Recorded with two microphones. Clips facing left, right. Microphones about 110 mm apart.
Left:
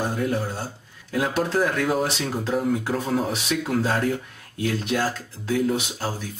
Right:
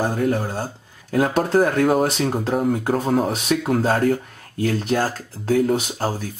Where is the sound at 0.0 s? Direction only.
55° right (ahead or behind).